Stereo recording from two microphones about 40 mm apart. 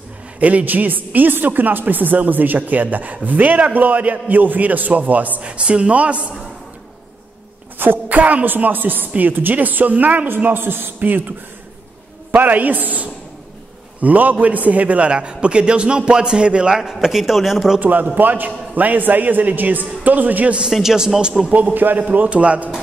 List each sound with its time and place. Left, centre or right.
0.4 s a man's voice: right
5.4 s a woman's voice: right
8.1 s a woman's voice: right
8.5 s a man's voice: right
10.5 s a man's voice: right
11.0 s a man's voice: right
15.0 s a man's voice: right
17.0 s speech: centre
17.7 s a man's voice: right
20.7 s a man's voice: centre
21.4 s a man's voice: centre
21.7 s a man's voice: right
22.1 s a woman's voice: right